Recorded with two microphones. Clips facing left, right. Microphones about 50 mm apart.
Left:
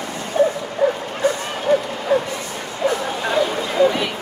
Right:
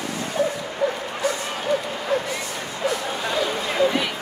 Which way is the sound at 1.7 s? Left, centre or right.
Left.